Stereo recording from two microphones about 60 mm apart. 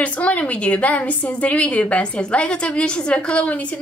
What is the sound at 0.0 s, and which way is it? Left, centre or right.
A woman's voice, left.